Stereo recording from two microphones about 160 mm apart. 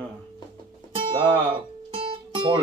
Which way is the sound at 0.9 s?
30° right (ahead or behind).